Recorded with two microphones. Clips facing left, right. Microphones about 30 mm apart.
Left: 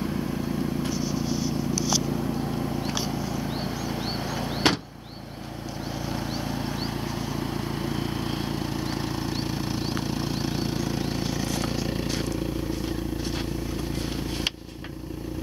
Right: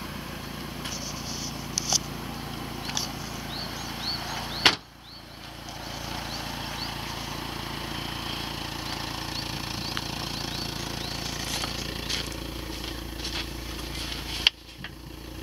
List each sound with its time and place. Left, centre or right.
0.0 s vehicle: centre
0.9 s a sound: centre
3.4 s chop: centre
6.0 s vehicle: centre
12.1 s vehicle: right
13.9 s a sound: right